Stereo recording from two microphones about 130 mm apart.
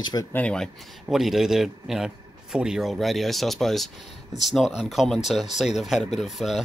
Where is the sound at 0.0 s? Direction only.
30° left (ahead or behind).